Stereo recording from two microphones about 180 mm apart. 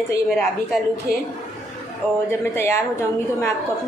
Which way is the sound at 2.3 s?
15° left (ahead or behind).